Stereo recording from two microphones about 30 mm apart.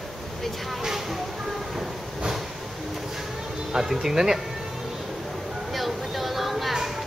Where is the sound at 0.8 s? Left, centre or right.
Centre.